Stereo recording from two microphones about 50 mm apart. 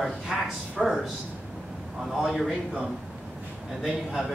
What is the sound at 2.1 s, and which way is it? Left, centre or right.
Speech, centre.